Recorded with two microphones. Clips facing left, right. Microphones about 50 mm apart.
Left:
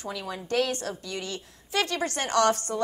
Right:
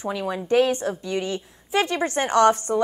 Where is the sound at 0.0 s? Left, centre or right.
Right.